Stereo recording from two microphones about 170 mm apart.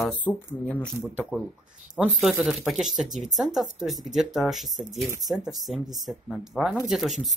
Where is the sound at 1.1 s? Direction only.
10° right (ahead or behind).